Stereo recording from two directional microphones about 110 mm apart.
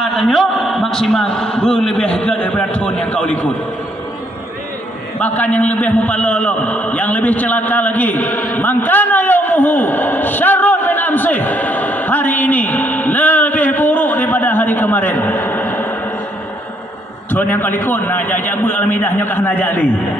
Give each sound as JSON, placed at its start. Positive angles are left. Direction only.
{"t": 0.0, "sound": "a man's voice", "side_deg": 0}
{"t": 5.2, "sound": "a man's voice", "side_deg": 15}
{"t": 17.3, "sound": "a man's voice", "side_deg": 15}